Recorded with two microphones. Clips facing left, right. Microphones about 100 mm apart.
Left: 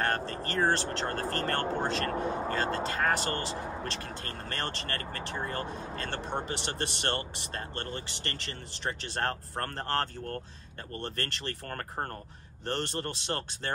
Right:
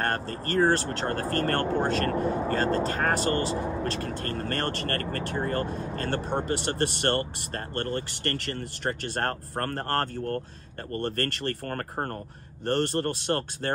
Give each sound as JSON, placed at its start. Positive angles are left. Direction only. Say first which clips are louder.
{"t": 0.0, "sound": "speech", "louder": "right 2 dB", "side_deg": -40}